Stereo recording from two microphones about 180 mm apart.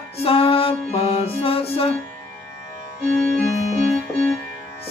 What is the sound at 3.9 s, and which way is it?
Music, 5° left (ahead or behind).